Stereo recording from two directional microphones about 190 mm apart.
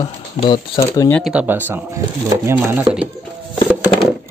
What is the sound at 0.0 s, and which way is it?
Speech, 25° left (ahead or behind).